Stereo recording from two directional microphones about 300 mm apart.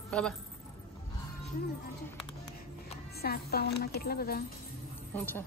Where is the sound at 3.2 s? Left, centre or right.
Left.